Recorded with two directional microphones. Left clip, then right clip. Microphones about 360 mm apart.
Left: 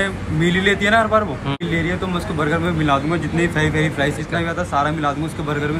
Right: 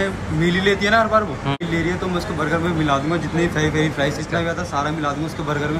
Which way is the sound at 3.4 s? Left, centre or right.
Right.